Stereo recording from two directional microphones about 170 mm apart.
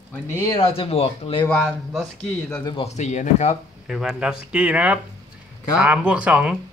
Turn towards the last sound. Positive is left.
turn(degrees=-5)  # may be behind; listen again after turning